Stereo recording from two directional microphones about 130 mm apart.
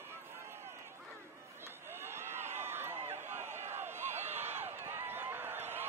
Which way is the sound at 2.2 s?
20° right (ahead or behind).